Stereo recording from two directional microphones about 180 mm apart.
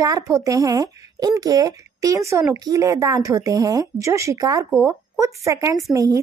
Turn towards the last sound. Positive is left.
turn(degrees=-20)  # may be behind; listen again after turning